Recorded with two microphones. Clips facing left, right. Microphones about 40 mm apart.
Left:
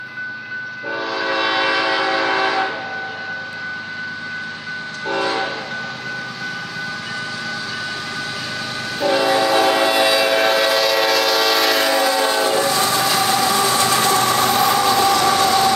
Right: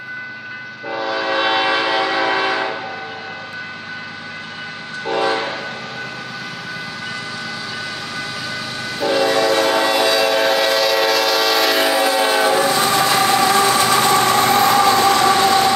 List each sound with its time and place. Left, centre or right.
0.8 s train: centre
5.0 s train: centre
9.0 s train: centre
11.8 s train: centre
12.9 s vehicle: right
13.8 s train: right